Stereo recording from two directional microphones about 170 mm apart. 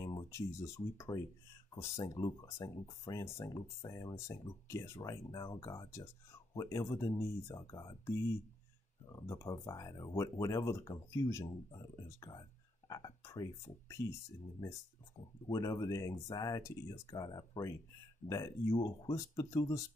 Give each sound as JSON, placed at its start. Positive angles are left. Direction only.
{"t": 0.0, "sound": "speech", "side_deg": 20}
{"t": 9.1, "sound": "speech", "side_deg": 20}
{"t": 15.4, "sound": "speech", "side_deg": 20}